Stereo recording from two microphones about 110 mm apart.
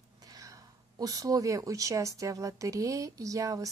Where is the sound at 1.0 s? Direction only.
30° right (ahead or behind).